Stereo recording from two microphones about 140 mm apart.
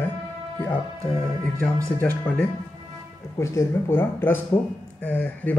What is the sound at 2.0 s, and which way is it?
Speech, 10° left (ahead or behind).